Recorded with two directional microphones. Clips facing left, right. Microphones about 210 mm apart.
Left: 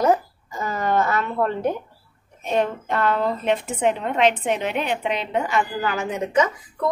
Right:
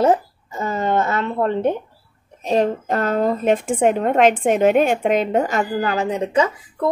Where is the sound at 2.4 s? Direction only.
35° right (ahead or behind).